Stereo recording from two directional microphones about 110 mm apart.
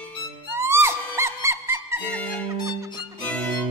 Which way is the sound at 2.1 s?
10° left (ahead or behind).